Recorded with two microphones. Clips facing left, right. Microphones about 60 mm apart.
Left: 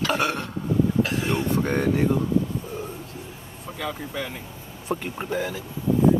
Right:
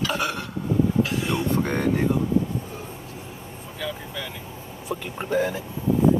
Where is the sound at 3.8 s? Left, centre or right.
Left.